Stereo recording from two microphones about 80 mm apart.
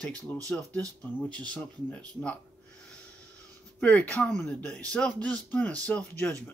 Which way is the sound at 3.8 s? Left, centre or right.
Centre.